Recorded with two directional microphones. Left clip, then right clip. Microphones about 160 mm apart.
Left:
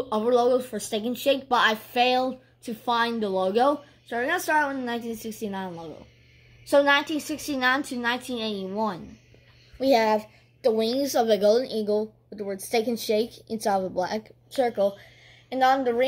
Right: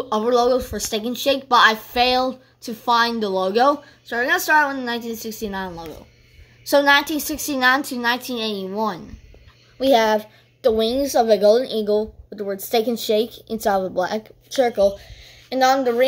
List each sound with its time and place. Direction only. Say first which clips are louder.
0.1 s a woman's voice: right 4 dB; 10° right (ahead or behind)
14.7 s a woman's voice: right 7 dB; 20° right (ahead or behind)